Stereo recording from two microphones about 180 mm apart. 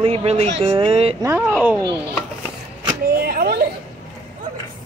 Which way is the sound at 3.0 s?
55° right (ahead or behind).